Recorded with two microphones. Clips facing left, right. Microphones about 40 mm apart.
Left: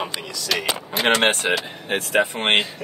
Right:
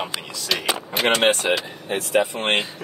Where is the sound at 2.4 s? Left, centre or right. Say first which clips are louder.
Left 2 dB; left.